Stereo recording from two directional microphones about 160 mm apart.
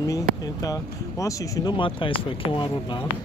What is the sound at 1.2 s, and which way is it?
Speech, 30° left (ahead or behind).